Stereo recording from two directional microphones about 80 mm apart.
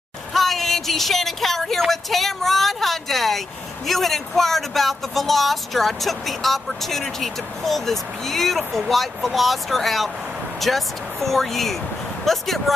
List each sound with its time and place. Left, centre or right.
0.3 s speech: centre